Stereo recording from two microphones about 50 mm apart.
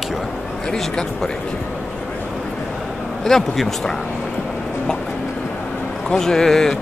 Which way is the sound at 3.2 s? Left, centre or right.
Centre.